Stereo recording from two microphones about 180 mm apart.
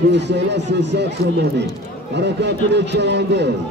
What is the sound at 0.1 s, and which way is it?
A man's voice, 70° right (ahead or behind).